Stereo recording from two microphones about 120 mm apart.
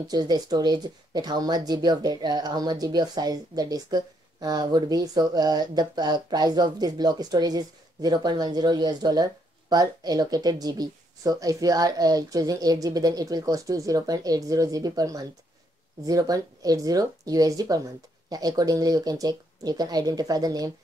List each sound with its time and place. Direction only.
0.1 s speech: 35° right (ahead or behind)